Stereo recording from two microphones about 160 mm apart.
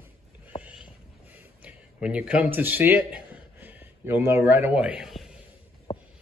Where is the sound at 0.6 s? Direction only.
5° right (ahead or behind).